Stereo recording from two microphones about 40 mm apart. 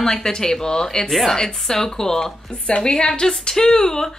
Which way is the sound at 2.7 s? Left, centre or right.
Left.